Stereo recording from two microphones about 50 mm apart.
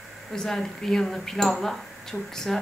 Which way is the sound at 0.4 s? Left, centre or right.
Centre.